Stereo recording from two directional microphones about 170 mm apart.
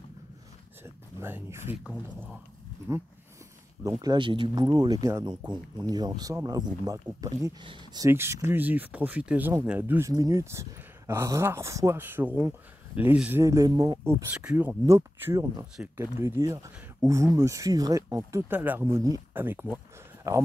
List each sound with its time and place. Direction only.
0.8 s a sound: 15° right (ahead or behind)
4.0 s speech: 25° right (ahead or behind)
8.1 s speech: 15° right (ahead or behind)